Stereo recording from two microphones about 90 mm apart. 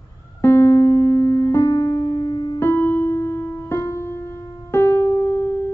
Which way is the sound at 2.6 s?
25° left (ahead or behind).